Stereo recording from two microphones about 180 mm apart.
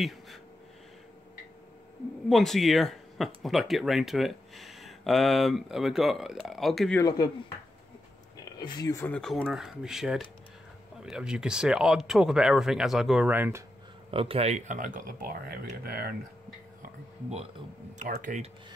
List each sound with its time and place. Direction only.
0.0 s a sound: centre (ahead or behind)
2.2 s speech: centre (ahead or behind)
7.0 s speech: 20° left (ahead or behind)
8.5 s speech: 20° left (ahead or behind); by 13.7 s 15° right (ahead or behind)
14.1 s speech: 30° right (ahead or behind); by 16.2 s 55° right (ahead or behind)
17.9 s speech: 50° right (ahead or behind)